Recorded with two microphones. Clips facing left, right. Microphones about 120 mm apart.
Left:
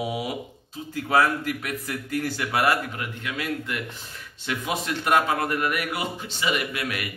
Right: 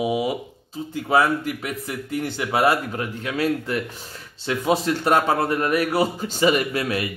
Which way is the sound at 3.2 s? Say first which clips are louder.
Right 7 dB; 35° right (ahead or behind).